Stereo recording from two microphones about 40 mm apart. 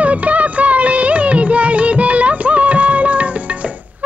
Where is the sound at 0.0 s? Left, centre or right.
Right.